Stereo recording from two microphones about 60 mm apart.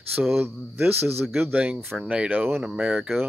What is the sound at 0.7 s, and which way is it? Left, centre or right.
Speech, right.